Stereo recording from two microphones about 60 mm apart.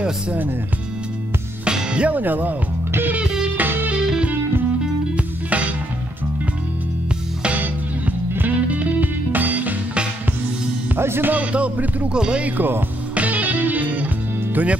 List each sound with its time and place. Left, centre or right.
1.6 s music: centre; by 3.2 s right
3.2 s music: centre
3.5 s music: right
3.9 s music: centre
7.4 s music: right
11.0 s speech: right
11.2 s music: right
12.1 s music: centre